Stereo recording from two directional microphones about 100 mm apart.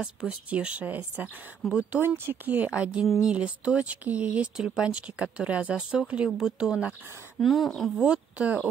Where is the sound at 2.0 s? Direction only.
20° right (ahead or behind); by 7.9 s centre (ahead or behind).